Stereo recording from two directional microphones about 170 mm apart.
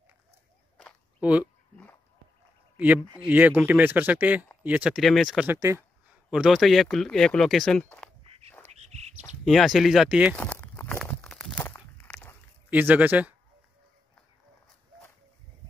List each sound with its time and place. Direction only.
0.7 s walk: 5° right (ahead or behind)
3.3 s speech: 10° right (ahead or behind)
5.5 s speech: 15° right (ahead or behind)
6.3 s speech: centre (ahead or behind)
8.6 s bird: 40° right (ahead or behind)
9.4 s speech: centre (ahead or behind)
10.3 s a sound: 10° left (ahead or behind)
12.6 s speech: 10° right (ahead or behind)